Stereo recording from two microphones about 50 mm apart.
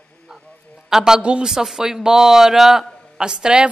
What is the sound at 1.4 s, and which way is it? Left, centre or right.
Speech, centre.